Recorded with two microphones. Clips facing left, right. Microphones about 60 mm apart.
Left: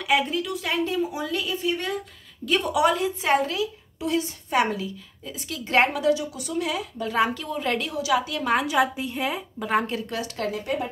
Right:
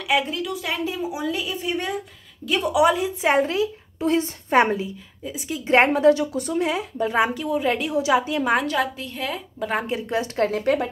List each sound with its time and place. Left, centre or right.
0.0 s a woman's voice: centre
2.4 s a woman's voice: centre
3.2 s speech: right
5.2 s a woman's voice: centre
5.7 s speech: right
6.0 s speech: right; by 7.9 s centre
7.9 s speech: right
8.5 s a woman's voice: centre
9.6 s a woman's voice: centre
9.8 s speech: right
10.5 s a woman's voice: right